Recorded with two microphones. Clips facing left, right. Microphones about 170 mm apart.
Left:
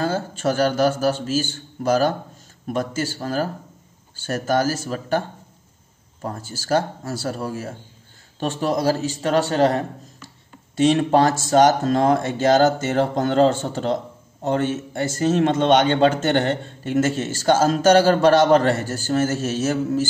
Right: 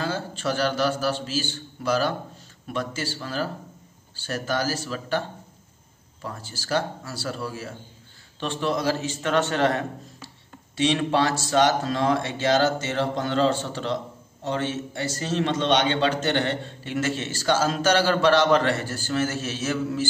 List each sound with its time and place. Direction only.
0.0 s a man's voice: 45° left (ahead or behind)
6.2 s a man's voice: 45° left (ahead or behind)
10.8 s a man's voice: 45° left (ahead or behind)